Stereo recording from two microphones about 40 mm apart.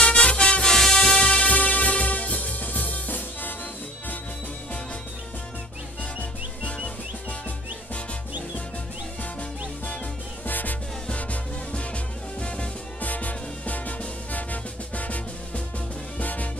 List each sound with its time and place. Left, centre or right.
0.0 s music: left
0.9 s music: left
10.4 s music: left
12.4 s music: left
13.0 s music: left